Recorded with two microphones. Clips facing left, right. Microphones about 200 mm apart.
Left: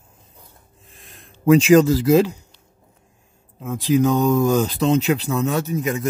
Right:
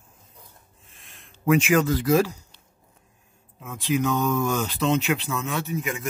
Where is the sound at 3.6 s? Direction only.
35° left (ahead or behind).